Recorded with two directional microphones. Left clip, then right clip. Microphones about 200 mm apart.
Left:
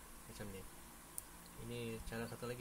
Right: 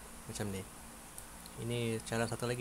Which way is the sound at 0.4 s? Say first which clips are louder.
Right 11 dB; 35° right (ahead or behind).